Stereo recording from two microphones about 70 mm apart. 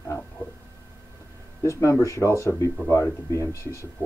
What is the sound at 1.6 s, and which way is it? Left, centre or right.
Speech, left.